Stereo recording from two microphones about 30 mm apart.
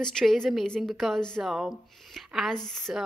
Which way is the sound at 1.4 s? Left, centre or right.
Right.